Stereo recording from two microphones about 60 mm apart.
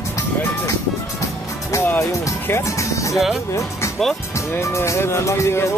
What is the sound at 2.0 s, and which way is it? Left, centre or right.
Speech, left.